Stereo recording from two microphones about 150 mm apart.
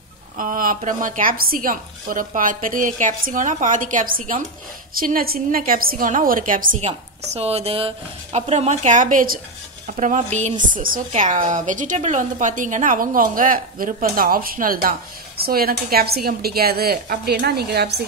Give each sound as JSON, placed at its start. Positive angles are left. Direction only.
{"t": 0.4, "sound": "a woman's voice", "side_deg": -65}
{"t": 9.9, "sound": "speech", "side_deg": -55}
{"t": 10.7, "sound": "a woman's voice", "side_deg": -70}
{"t": 11.1, "sound": "a woman's voice", "side_deg": -55}